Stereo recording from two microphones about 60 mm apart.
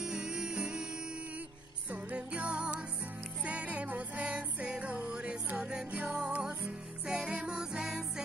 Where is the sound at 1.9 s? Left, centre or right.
Right.